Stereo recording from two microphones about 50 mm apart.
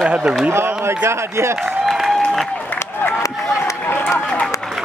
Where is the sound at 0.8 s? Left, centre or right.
Right.